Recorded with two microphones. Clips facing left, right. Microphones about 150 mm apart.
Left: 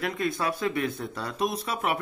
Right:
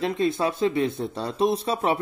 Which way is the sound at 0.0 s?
25° right (ahead or behind).